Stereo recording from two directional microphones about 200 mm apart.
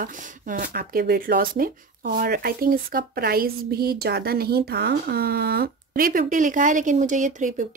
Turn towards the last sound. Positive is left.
turn(degrees=-40)  # may be behind; listen again after turning